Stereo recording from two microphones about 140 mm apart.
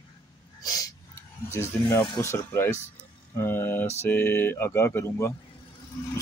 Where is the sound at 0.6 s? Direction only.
25° left (ahead or behind).